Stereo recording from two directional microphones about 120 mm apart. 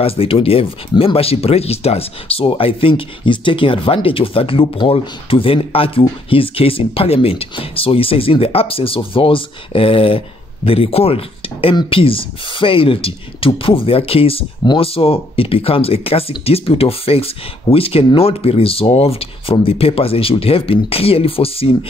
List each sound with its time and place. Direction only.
0.0 s speech: 50° left (ahead or behind)